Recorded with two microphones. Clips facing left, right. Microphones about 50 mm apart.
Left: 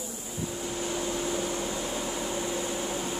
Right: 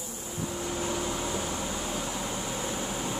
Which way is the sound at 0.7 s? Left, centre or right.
Centre.